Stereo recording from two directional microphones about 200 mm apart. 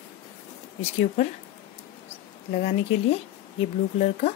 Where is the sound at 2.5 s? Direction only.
35° left (ahead or behind).